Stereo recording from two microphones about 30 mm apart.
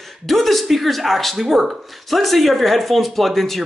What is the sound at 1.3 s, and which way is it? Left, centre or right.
Speech, centre.